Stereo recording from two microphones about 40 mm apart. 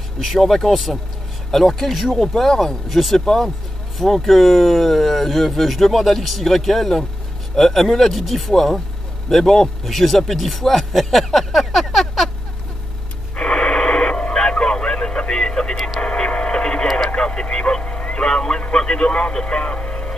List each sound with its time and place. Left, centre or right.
0.2 s speech: centre
11.9 s a sound: centre
13.4 s radio: left
14.2 s a sound: left
15.7 s vehicle: centre
16.0 s radio: left
17.1 s vehicle: left
17.9 s vehicle: left
18.2 s speech: left